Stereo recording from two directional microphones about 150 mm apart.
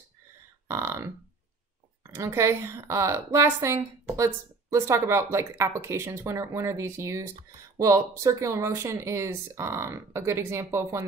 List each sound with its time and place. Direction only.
0.7 s a woman's voice: 15° right (ahead or behind)